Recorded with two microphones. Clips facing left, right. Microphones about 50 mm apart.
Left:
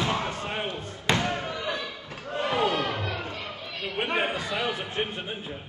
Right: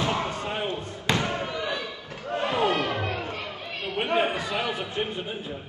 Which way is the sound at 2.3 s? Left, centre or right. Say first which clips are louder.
Right 1 dB; right.